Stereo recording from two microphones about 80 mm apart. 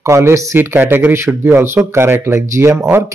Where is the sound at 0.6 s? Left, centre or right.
Right.